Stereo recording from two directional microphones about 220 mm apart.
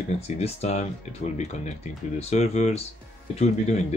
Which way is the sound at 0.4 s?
30° left (ahead or behind).